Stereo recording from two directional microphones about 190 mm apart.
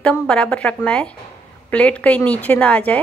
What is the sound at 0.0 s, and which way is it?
A woman's voice, 5° left (ahead or behind).